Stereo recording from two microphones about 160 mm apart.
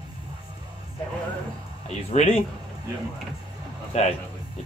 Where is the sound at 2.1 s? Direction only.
40° left (ahead or behind).